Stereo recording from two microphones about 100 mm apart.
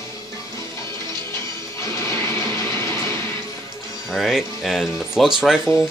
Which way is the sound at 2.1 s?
30° left (ahead or behind).